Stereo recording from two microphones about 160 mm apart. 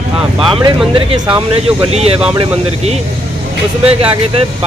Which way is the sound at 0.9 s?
35° right (ahead or behind).